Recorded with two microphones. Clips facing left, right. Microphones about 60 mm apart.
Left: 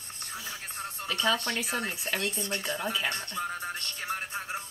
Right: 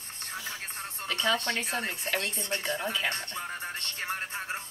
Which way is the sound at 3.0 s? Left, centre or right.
Right.